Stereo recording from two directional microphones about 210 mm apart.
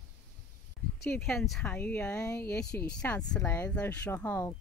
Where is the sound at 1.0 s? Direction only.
5° left (ahead or behind).